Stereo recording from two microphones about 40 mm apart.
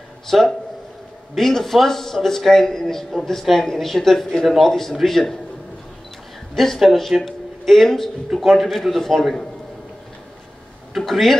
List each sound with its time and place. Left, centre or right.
0.3 s a man's voice: centre
6.5 s a man's voice: centre
10.9 s speech: centre